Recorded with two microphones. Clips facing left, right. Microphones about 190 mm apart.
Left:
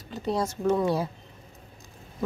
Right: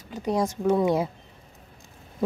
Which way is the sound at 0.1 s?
15° right (ahead or behind).